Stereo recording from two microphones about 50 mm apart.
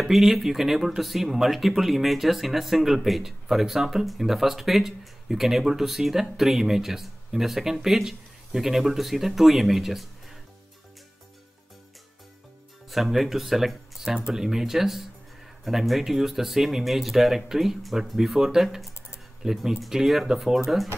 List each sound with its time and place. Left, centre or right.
0.0 s speech: centre
12.9 s speech: centre